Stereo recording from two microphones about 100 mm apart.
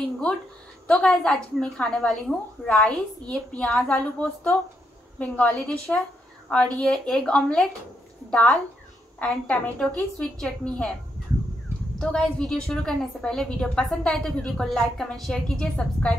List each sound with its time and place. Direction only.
0.8 s a woman's voice: 10° left (ahead or behind)
5.2 s a woman's voice: 15° left (ahead or behind)
12.0 s a woman's voice: 10° left (ahead or behind)